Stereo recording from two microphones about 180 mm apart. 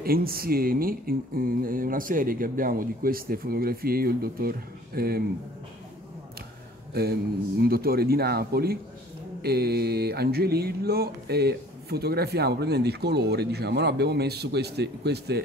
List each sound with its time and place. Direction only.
0.0 s speech: 55° right (ahead or behind)
6.9 s a sound: 60° right (ahead or behind)
7.6 s speech: 55° right (ahead or behind)